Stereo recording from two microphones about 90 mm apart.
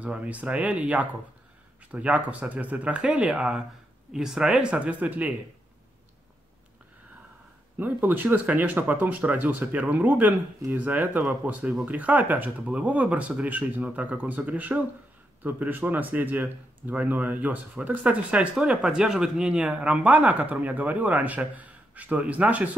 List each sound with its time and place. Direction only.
0.0 s speech: 15° right (ahead or behind)
7.8 s speech: 20° right (ahead or behind)